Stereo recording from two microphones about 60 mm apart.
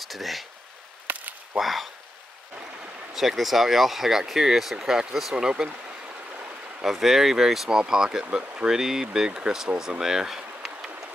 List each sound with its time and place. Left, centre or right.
0.0 s speech: centre
1.0 s chop: right
1.6 s speech: centre
3.1 s speech: centre
6.0 s stream: right
6.8 s speech: centre
8.7 s speech: centre
9.8 s a sound: centre